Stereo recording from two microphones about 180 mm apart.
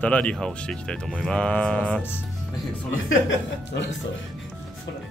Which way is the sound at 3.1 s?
90° left.